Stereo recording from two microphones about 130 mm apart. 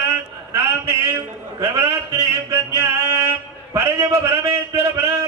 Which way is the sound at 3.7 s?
20° right (ahead or behind).